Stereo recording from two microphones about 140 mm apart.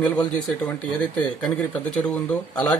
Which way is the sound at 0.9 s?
5° left (ahead or behind).